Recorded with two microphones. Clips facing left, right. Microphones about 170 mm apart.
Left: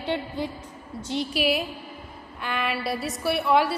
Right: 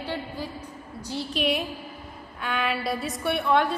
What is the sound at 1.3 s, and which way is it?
A woman's voice, 5° left (ahead or behind).